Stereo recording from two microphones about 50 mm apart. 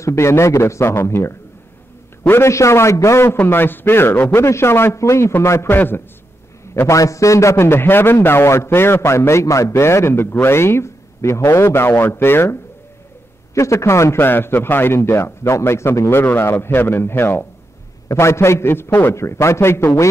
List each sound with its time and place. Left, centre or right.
0.0 s a man's voice: left
2.5 s a man's voice: left
3.4 s a man's voice: left
4.4 s a man's voice: left
4.9 s a man's voice: left
5.4 s a man's voice: left
5.7 s a man's voice: left
6.9 s a man's voice: left
13.6 s a man's voice: left
14.1 s a man's voice: left
15.0 s a man's voice: left
18.1 s a man's voice: left
19.1 s a man's voice: left